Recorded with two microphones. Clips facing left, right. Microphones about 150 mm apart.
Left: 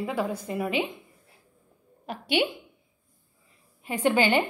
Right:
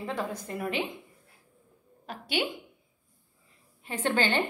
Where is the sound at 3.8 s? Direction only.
10° left (ahead or behind).